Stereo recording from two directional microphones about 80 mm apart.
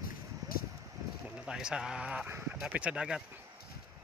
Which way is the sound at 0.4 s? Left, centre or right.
Right.